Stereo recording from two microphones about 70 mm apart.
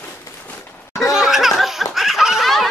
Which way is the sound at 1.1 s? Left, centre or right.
Centre.